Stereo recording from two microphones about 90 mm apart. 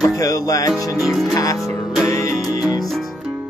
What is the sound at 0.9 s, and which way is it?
Music, centre (ahead or behind).